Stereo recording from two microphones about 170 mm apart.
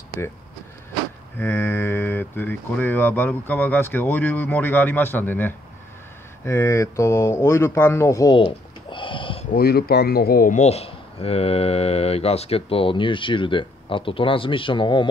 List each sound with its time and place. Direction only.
1.4 s speech: 10° left (ahead or behind)
8.4 s a sound: 30° left (ahead or behind)
9.5 s speech: 65° left (ahead or behind); by 15.0 s 30° left (ahead or behind)